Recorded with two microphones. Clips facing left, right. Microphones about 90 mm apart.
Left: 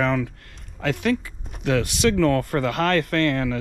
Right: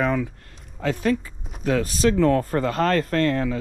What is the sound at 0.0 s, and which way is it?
Speech, 75° left (ahead or behind).